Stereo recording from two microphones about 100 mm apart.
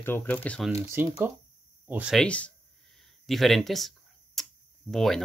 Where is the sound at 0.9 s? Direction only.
25° right (ahead or behind).